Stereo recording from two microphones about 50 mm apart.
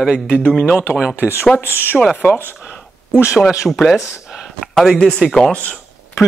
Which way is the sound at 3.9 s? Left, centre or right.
Centre.